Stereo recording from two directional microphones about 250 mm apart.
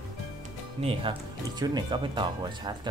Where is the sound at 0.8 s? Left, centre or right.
Right.